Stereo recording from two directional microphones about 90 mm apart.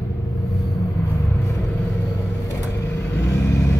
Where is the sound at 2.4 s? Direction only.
35° left (ahead or behind).